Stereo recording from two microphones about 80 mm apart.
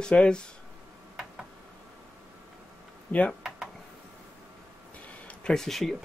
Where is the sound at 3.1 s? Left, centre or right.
Centre.